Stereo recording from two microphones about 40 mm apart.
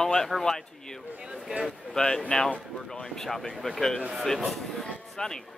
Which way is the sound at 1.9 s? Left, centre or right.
Centre.